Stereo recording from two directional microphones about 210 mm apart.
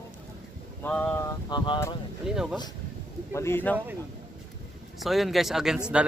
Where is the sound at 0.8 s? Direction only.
5° left (ahead or behind).